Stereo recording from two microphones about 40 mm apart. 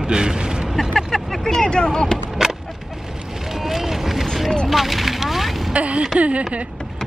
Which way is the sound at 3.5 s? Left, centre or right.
Centre.